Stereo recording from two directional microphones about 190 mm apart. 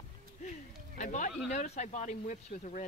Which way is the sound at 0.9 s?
40° left (ahead or behind).